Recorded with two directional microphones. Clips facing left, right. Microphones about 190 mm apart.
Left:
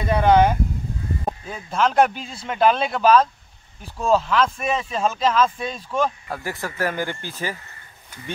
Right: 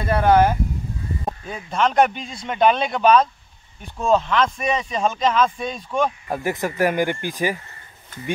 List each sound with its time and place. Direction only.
0.0 s speech: centre (ahead or behind)
6.2 s speech: 20° right (ahead or behind)
8.1 s speech: 10° left (ahead or behind)